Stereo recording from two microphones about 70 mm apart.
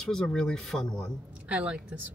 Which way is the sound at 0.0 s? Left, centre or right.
Centre.